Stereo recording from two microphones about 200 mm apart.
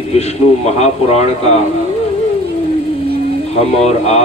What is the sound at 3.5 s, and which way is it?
Speech, 30° left (ahead or behind).